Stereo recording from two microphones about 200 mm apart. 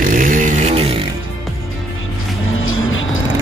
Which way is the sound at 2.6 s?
85° left.